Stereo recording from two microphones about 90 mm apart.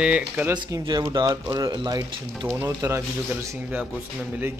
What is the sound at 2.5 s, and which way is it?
Speech, 30° right (ahead or behind).